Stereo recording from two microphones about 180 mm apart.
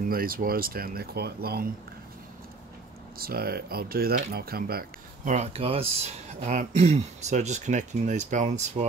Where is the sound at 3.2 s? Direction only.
55° right (ahead or behind).